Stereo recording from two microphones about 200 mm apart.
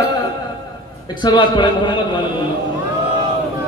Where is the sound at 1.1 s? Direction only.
20° left (ahead or behind).